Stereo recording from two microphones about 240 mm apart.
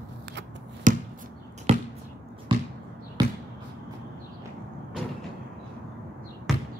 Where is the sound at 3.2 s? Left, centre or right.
Centre.